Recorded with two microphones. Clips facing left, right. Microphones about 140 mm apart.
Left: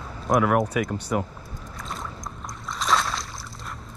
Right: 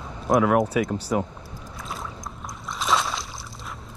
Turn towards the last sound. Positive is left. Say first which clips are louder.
# even
turn(degrees=0)  # may be behind; listen again after turning